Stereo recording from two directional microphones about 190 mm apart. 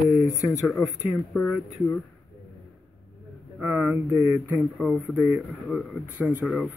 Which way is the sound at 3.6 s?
10° right (ahead or behind).